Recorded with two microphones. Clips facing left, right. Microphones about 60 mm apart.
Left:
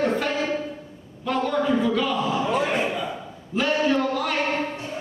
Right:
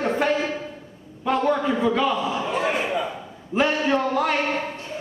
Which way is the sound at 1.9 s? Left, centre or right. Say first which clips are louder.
Right 2 dB; right.